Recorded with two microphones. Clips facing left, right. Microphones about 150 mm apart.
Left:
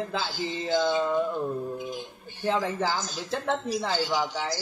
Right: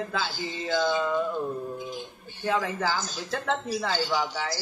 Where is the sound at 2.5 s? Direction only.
20° left (ahead or behind).